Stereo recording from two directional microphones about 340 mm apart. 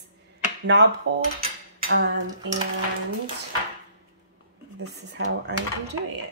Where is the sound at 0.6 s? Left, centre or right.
Right.